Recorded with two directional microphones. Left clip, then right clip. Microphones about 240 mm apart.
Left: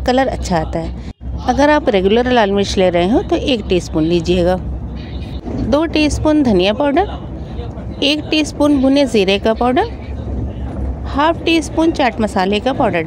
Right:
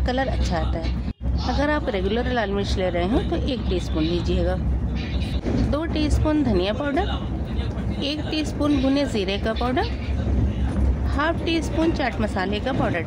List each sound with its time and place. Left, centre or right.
0.0 s a woman's voice: left
5.7 s speech: left
11.1 s speech: left